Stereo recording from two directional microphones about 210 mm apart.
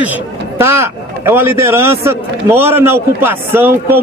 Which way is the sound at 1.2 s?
10° right (ahead or behind).